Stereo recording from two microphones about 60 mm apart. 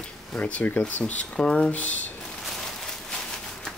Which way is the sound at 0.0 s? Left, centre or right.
Centre.